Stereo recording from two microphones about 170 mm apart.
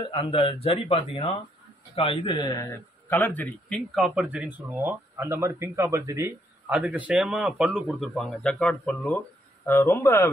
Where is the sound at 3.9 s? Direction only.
5° right (ahead or behind).